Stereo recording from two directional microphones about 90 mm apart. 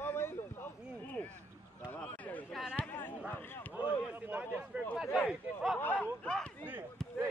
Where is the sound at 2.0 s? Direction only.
20° left (ahead or behind).